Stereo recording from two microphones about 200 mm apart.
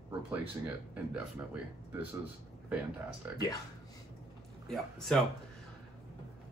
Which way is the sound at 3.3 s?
10° right (ahead or behind).